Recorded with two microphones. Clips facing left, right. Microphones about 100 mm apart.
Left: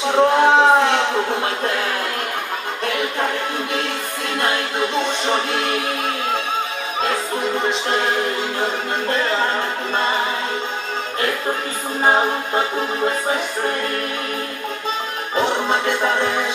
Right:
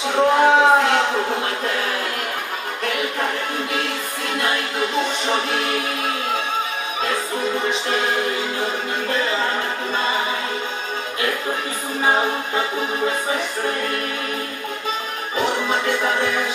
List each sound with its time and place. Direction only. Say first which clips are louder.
0.1 s a sound: left 1 dB; 25° left (ahead or behind)
4.4 s music: left 2 dB; 35° left (ahead or behind)
15.3 s music: left 2 dB; 30° left (ahead or behind)